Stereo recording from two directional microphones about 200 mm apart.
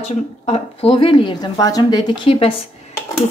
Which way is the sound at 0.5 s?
30° left (ahead or behind).